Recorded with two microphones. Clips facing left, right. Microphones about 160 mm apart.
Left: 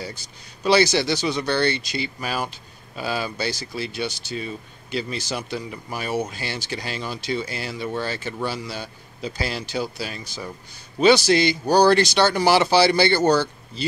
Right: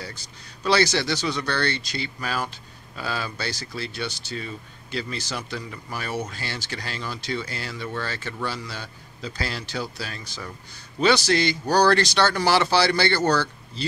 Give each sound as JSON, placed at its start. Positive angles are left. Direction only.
{"t": 0.7, "sound": "speech", "side_deg": 15}